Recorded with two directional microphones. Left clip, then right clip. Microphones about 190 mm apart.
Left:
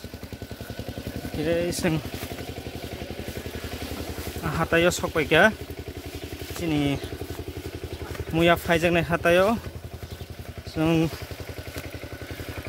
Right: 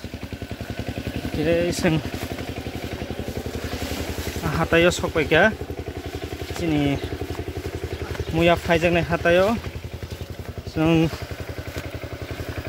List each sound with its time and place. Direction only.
1.4 s speech: 10° left (ahead or behind)
4.4 s speech: 10° left (ahead or behind)
6.6 s speech: 15° left (ahead or behind)
8.4 s speech: 25° left (ahead or behind)
10.8 s speech: 10° left (ahead or behind)